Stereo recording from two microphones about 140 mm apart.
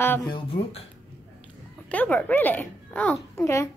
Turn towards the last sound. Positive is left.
turn(degrees=20)  # may be behind; listen again after turning